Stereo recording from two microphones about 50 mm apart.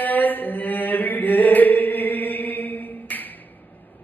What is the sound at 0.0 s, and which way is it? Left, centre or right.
Chant, left.